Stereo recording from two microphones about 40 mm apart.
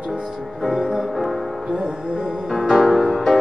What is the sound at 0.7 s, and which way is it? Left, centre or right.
Music, centre.